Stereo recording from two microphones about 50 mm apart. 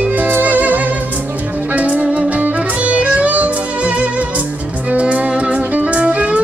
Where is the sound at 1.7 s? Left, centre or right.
Right.